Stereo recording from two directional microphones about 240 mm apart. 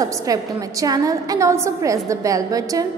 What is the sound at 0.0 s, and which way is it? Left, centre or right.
A woman's voice, centre.